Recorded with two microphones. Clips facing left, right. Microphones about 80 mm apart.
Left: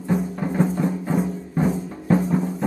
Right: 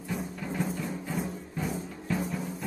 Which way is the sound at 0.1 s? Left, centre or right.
Left.